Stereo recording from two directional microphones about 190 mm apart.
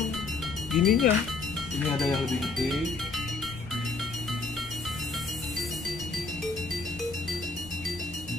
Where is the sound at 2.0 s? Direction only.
Centre (ahead or behind).